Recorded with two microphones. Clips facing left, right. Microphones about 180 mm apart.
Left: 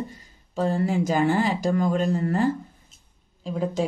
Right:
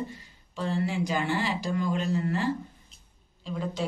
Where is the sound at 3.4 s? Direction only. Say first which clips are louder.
Left 6 dB; 45° left (ahead or behind).